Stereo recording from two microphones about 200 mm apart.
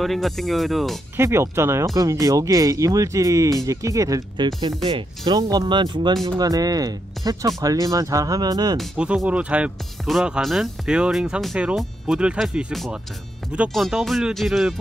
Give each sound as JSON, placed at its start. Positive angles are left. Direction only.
{"t": 0.0, "sound": "speech", "side_deg": 0}
{"t": 1.1, "sound": "speech", "side_deg": -15}
{"t": 8.7, "sound": "speech", "side_deg": -5}